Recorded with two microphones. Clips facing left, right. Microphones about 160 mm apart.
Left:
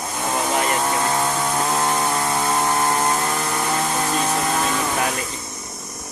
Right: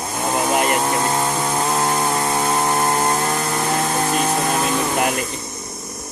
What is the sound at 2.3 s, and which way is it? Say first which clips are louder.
Power tool: right 1 dB; 15° right (ahead or behind).